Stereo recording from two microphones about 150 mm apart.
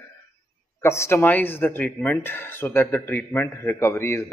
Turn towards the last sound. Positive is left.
turn(degrees=20)  # may be behind; listen again after turning